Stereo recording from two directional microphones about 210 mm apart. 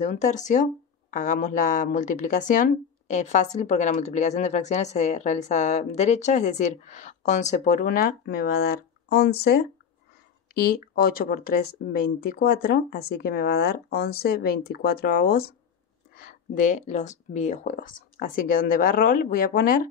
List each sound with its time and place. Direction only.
0.0 s a woman's voice: 35° left (ahead or behind)